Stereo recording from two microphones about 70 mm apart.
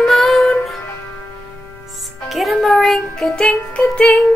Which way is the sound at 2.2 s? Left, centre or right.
Centre.